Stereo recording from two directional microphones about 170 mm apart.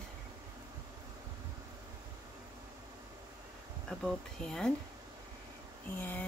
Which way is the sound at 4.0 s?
5° left (ahead or behind).